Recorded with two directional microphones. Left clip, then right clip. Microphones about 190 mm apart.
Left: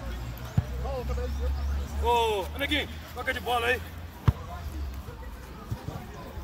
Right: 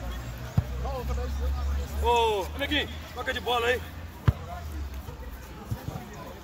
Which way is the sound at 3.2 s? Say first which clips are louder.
Right 1 dB; 35° left (ahead or behind).